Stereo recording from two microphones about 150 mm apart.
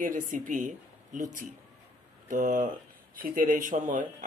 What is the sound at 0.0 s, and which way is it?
Speech, 60° right (ahead or behind).